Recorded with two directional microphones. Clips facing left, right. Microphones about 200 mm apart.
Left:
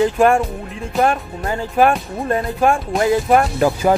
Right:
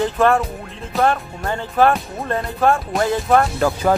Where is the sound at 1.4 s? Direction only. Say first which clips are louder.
Left 1 dB; 10° left (ahead or behind).